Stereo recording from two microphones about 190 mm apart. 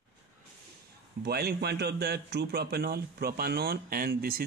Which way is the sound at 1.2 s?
55° right (ahead or behind).